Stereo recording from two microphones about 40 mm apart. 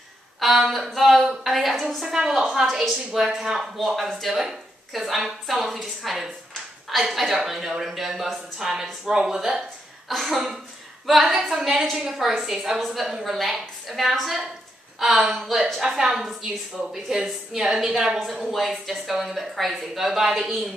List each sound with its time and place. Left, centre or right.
0.4 s a woman's voice: centre
3.7 s a woman's voice: centre